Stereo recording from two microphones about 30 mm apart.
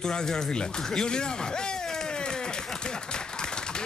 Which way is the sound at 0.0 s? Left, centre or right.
Left.